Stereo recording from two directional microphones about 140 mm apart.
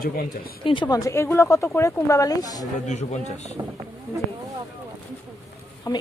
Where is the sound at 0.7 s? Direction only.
30° left (ahead or behind).